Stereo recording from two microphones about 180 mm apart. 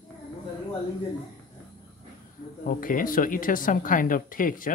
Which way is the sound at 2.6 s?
50° left (ahead or behind).